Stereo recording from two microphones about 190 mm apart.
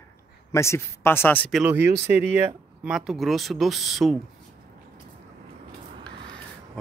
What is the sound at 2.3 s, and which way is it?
Speech, 10° right (ahead or behind).